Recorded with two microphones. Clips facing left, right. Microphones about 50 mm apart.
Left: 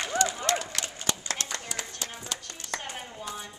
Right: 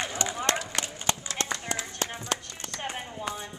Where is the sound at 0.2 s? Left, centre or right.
Right.